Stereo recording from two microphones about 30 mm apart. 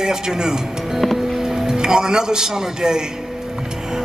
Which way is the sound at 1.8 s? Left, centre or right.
Right.